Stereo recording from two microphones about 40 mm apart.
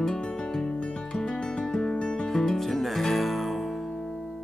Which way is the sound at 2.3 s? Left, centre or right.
Centre.